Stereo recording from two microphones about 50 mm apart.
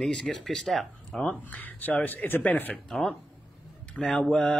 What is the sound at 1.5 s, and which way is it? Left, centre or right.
Speech, left.